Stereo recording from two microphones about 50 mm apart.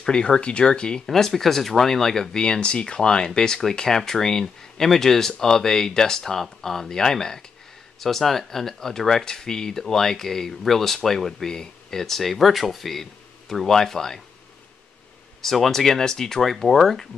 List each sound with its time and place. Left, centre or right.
0.0 s speech: centre
1.0 s speech: centre
15.4 s speech: centre